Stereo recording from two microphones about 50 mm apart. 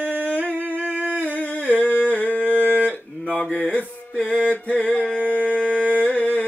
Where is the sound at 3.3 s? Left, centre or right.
Left.